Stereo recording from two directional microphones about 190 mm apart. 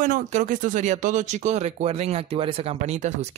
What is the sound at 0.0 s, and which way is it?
Speech, 40° right (ahead or behind).